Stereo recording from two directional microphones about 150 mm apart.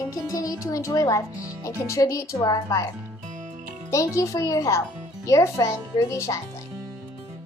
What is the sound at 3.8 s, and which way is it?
A woman's voice, 20° left (ahead or behind).